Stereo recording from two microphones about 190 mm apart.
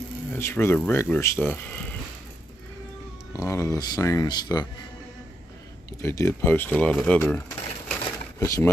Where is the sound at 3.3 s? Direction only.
15° left (ahead or behind).